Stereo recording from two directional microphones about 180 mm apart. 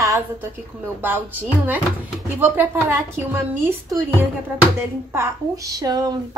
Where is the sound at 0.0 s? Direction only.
20° right (ahead or behind).